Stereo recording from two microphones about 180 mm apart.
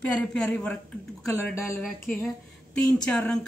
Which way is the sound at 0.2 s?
5° left (ahead or behind).